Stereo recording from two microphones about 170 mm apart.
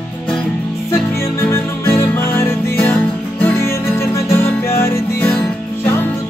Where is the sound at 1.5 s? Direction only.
15° left (ahead or behind).